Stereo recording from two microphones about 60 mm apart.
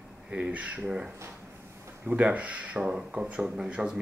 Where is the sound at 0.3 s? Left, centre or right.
Right.